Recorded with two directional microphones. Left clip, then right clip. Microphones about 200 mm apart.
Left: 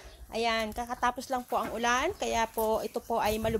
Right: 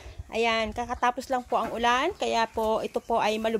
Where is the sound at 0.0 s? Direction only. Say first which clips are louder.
Right 4 dB; 45° right (ahead or behind).